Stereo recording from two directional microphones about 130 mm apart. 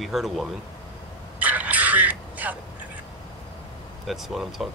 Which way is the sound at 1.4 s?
10° right (ahead or behind).